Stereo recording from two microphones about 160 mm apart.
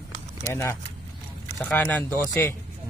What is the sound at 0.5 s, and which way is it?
A man's voice, 15° left (ahead or behind).